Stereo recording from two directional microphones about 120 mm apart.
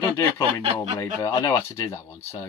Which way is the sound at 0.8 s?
25° left (ahead or behind).